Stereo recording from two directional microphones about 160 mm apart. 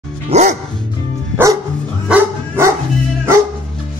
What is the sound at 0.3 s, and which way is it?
Music, 45° right (ahead or behind).